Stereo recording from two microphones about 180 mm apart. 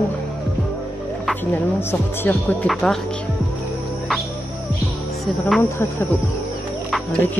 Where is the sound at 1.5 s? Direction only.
15° left (ahead or behind).